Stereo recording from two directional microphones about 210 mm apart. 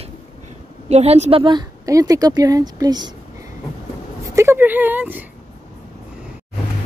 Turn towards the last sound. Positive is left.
turn(degrees=-10)  # may be behind; listen again after turning